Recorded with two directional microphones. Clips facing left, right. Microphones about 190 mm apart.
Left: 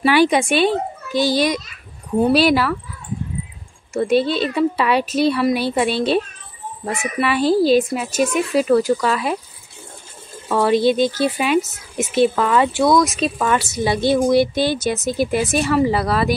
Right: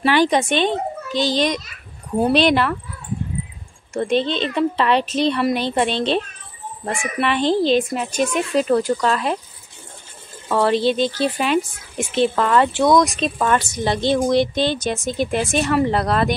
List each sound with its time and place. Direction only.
0.0 s speech: 10° left (ahead or behind)
3.9 s speech: 10° left (ahead or behind)
10.5 s speech: 10° left (ahead or behind)